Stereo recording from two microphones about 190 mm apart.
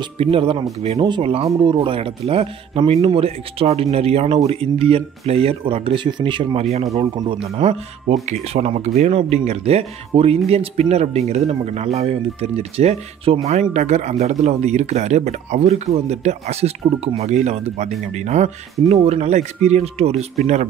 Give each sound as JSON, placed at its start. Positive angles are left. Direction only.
{"t": 0.0, "sound": "speech", "side_deg": -30}